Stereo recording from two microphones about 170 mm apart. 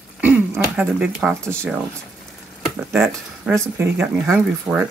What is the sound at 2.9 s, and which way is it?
Speech, 15° right (ahead or behind).